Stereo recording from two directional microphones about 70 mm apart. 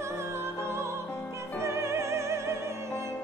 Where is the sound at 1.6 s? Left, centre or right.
Right.